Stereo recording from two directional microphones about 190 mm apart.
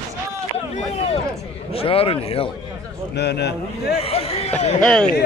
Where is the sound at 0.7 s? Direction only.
30° left (ahead or behind).